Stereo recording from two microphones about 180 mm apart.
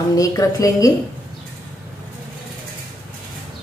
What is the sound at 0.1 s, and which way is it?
Speech, 20° left (ahead or behind).